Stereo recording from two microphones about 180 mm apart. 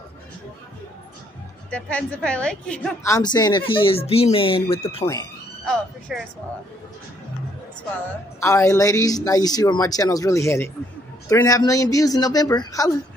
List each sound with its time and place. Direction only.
1.7 s a woman's voice: 5° left (ahead or behind)
3.0 s speech: 20° left (ahead or behind)
6.1 s speech: centre (ahead or behind)
8.4 s speech: 15° left (ahead or behind)